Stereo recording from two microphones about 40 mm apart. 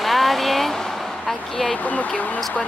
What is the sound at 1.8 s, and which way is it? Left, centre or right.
Speech, left.